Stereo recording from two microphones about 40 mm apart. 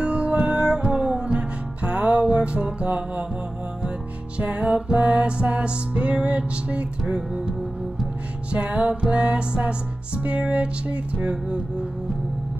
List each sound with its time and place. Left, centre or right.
0.0 s music: right
4.6 s music: right
8.5 s music: right